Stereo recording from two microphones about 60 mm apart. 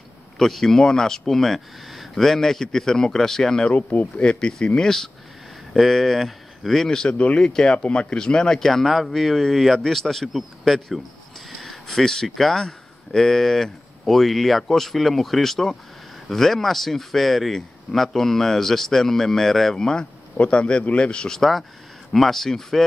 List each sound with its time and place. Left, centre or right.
0.4 s a man's voice: centre
21.4 s speech: centre